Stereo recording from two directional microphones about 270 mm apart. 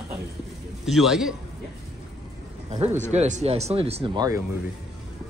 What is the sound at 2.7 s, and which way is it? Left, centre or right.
Speech, right.